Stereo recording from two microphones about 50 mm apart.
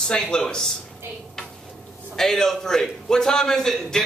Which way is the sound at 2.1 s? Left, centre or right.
Centre.